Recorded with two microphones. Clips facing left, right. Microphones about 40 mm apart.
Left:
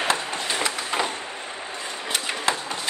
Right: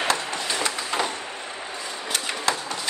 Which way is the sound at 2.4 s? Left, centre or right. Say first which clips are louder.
Even; left.